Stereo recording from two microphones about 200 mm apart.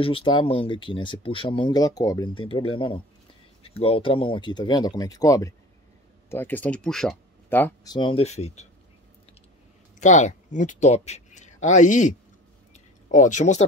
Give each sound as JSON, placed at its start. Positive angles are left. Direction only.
{"t": 0.0, "sound": "speech", "side_deg": 25}
{"t": 7.9, "sound": "speech", "side_deg": 25}
{"t": 9.9, "sound": "speech", "side_deg": 35}
{"t": 12.7, "sound": "a sound", "side_deg": 40}